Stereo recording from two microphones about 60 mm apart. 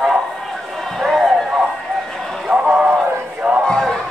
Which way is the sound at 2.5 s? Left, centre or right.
Centre.